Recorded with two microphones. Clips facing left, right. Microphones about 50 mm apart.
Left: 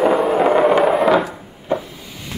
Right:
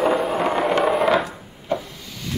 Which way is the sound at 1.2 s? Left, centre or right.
Centre.